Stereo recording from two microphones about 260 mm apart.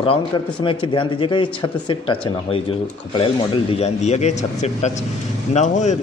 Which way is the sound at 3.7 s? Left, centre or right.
Left.